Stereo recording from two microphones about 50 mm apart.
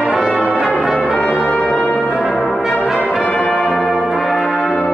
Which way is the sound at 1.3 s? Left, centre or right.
Centre.